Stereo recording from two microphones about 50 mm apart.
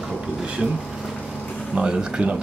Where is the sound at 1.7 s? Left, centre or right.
Centre.